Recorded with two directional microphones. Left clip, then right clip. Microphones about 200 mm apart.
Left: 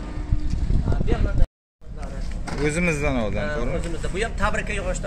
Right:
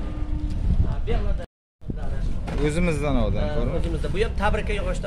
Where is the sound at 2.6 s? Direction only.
Centre (ahead or behind).